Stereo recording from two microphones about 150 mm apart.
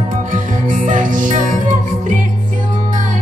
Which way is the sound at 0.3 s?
60° right (ahead or behind).